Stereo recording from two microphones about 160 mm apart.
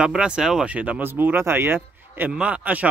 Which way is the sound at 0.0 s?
5° right (ahead or behind).